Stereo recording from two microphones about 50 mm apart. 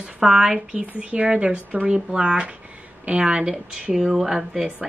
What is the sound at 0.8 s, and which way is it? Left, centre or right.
Speech, right.